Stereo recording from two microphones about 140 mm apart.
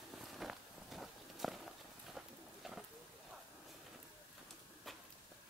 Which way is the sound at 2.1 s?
Centre (ahead or behind).